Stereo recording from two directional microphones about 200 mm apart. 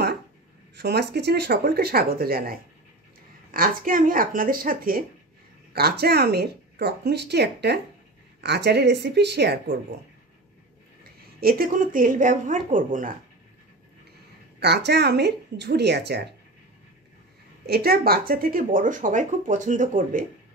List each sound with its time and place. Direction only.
0.7 s speech: 55° right (ahead or behind)
11.4 s speech: 50° right (ahead or behind)
14.6 s speech: 55° right (ahead or behind)
17.6 s speech: 50° right (ahead or behind)